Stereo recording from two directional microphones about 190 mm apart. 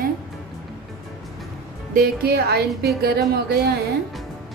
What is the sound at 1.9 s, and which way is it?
A woman's voice, 55° right (ahead or behind).